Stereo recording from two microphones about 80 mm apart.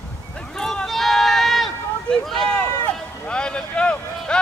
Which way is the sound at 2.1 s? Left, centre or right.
Centre.